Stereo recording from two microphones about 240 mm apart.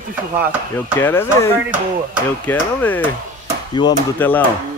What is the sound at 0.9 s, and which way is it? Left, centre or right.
Speech, centre.